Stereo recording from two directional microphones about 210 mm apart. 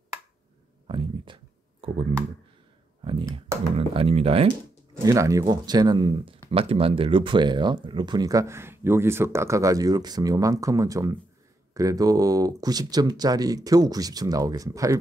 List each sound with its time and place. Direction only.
0.8 s a sound: 25° right (ahead or behind)
3.0 s speech: 25° right (ahead or behind)
5.0 s speech: 15° right (ahead or behind)